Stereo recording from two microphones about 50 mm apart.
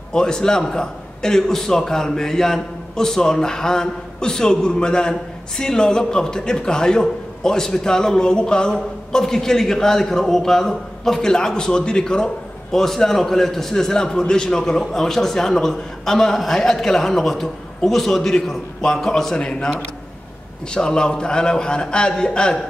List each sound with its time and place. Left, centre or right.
0.1 s a man's voice: centre
19.3 s a man's voice: centre
20.7 s a man's voice: centre